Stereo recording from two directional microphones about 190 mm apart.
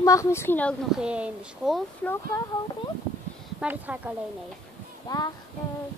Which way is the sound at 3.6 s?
10° right (ahead or behind).